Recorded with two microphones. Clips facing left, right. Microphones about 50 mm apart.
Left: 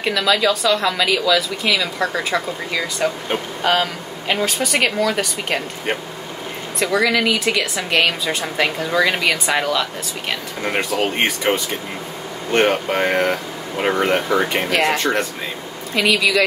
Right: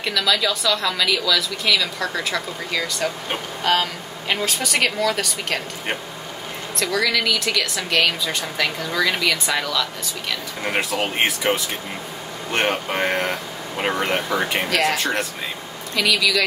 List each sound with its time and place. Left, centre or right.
0.0 s a woman's voice: centre
6.8 s a woman's voice: left
10.6 s speech: centre
15.9 s a woman's voice: centre